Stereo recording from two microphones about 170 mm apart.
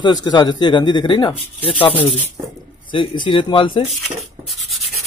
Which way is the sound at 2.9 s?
30° left (ahead or behind).